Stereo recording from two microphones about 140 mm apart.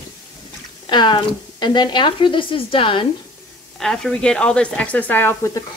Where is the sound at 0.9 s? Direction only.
30° left (ahead or behind).